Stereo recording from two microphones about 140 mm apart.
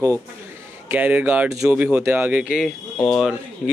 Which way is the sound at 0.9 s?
10° right (ahead or behind).